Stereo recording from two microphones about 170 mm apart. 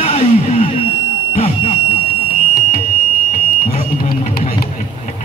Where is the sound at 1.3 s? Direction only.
35° left (ahead or behind).